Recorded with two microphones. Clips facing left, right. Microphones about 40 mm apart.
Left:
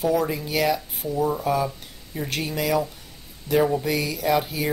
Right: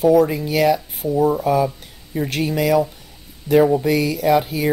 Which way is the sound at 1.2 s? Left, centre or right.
Right.